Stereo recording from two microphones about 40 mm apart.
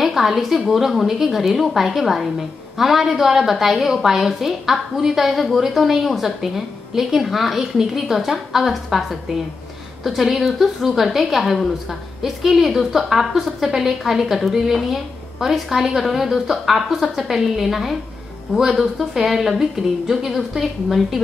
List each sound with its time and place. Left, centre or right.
0.0 s a woman's voice: centre